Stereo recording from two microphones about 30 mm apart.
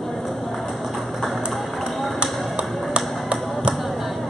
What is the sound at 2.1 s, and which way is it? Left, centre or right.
Tap, right.